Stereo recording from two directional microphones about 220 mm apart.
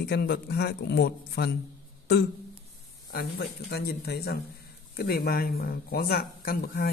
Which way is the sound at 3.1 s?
45° left (ahead or behind).